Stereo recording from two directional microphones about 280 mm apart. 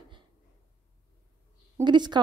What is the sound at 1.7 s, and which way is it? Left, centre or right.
Speech, centre.